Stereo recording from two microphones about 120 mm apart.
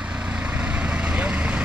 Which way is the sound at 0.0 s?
10° right (ahead or behind).